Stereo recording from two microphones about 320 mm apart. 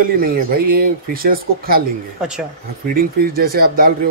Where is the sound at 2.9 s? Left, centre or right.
Right.